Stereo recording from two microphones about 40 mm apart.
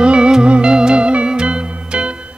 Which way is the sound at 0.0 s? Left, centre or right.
Right.